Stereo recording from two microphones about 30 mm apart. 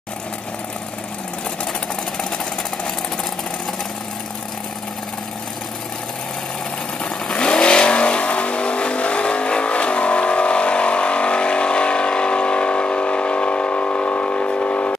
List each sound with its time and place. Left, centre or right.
7.3 s vehicle: left